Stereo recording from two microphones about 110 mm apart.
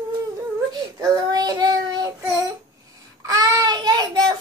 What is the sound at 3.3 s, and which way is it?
Child singing, 35° right (ahead or behind).